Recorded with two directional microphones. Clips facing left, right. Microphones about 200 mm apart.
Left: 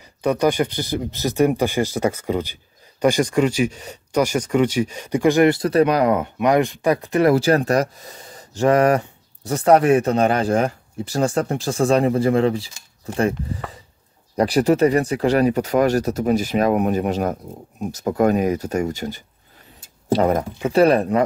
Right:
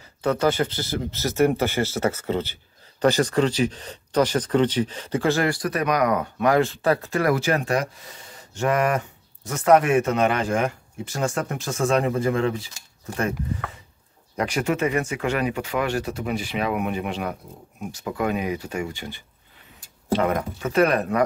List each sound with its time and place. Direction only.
0.0 s speech: 15° left (ahead or behind)
7.3 s speech: 35° left (ahead or behind)